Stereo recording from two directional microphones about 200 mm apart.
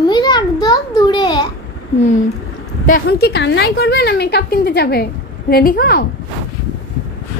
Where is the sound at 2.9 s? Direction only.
50° left (ahead or behind).